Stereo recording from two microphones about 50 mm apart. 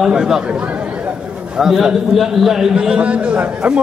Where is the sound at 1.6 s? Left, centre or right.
Centre.